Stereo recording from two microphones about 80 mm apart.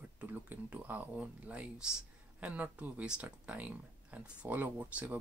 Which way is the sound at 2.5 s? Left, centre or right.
Centre.